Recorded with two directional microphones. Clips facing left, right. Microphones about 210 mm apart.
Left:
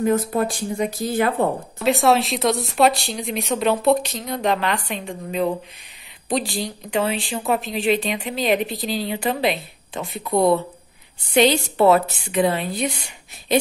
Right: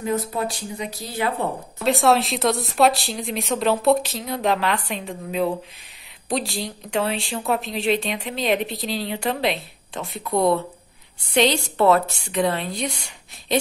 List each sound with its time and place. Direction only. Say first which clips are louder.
0.0 s speech: left 5 dB; 50° left (ahead or behind)
1.8 s a woman's voice: left 1 dB; centre (ahead or behind)